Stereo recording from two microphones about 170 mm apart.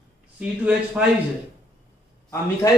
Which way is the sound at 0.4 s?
5° right (ahead or behind).